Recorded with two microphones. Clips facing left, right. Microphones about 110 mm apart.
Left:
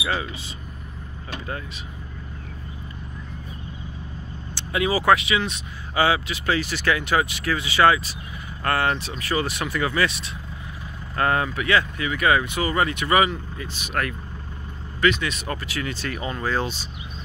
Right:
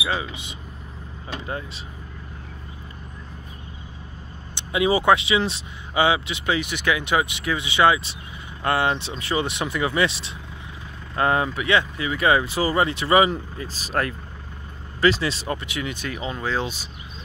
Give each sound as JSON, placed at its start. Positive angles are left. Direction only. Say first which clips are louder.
{"t": 0.0, "sound": "speech", "louder": "even", "side_deg": -15}
{"t": 4.6, "sound": "speech", "louder": "right 3 dB", "side_deg": -25}